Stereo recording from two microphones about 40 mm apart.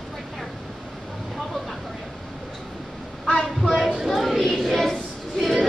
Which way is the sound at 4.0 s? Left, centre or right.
Centre.